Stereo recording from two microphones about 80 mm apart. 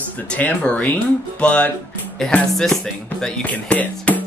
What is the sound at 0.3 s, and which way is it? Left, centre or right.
Speech, centre.